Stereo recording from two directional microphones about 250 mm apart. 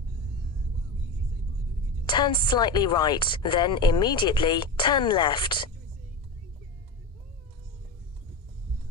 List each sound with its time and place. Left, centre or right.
2.0 s speech: centre